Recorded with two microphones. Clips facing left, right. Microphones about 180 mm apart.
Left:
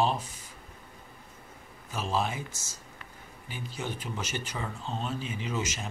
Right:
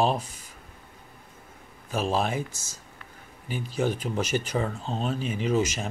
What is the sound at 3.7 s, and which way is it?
Speech, 50° right (ahead or behind).